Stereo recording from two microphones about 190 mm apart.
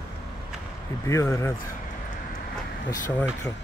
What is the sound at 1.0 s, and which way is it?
Speech, 15° left (ahead or behind).